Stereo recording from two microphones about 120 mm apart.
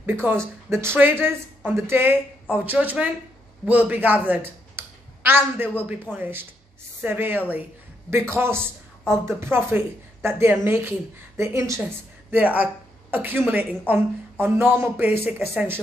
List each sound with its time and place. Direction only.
0.0 s a woman's voice: 20° right (ahead or behind)
11.8 s a woman's voice: 15° right (ahead or behind)